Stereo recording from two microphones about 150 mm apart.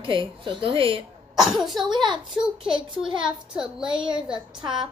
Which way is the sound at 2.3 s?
5° right (ahead or behind).